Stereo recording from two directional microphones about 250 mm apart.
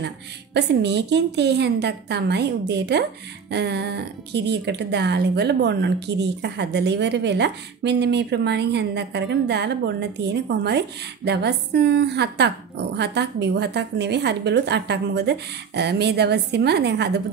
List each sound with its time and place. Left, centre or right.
0.6 s a woman's voice: right